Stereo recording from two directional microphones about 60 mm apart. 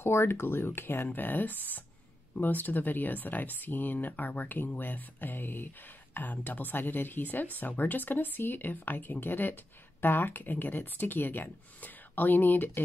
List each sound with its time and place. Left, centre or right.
0.0 s speech: left